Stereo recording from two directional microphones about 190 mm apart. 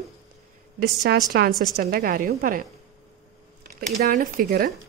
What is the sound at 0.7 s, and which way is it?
A woman's voice, 55° right (ahead or behind).